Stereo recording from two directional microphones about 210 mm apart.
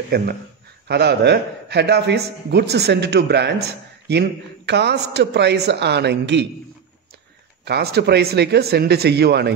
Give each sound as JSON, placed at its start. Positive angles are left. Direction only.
{"t": 0.1, "sound": "a man's voice", "side_deg": -45}
{"t": 7.6, "sound": "a man's voice", "side_deg": -50}